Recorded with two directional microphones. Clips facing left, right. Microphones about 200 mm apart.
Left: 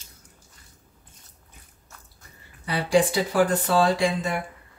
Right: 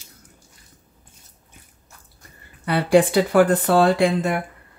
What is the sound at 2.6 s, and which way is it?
Speech, 60° right (ahead or behind).